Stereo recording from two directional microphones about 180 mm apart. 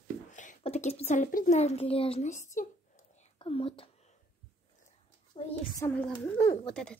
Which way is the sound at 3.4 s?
30° left (ahead or behind).